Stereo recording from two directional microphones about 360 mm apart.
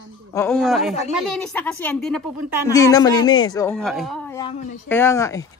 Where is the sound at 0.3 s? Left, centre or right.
Centre.